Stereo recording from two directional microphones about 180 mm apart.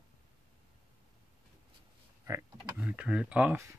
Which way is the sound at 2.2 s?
10° right (ahead or behind).